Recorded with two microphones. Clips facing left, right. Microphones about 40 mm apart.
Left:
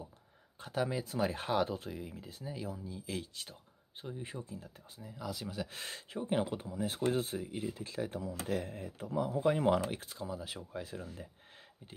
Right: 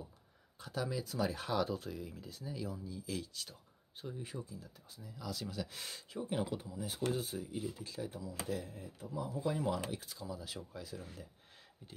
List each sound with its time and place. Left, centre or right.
0.6 s speech: left
5.1 s speech: left
7.7 s speech: left
10.0 s speech: left